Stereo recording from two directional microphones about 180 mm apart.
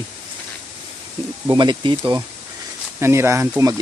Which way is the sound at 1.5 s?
25° right (ahead or behind).